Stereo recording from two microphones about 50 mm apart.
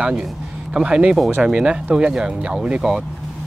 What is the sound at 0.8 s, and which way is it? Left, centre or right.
Speech, centre.